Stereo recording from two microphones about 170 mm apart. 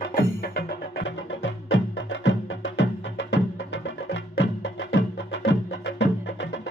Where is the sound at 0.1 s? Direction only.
65° left (ahead or behind).